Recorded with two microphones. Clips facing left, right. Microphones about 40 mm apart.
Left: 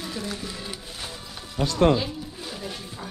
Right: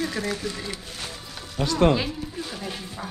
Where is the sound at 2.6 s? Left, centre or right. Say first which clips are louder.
Right 2 dB; centre.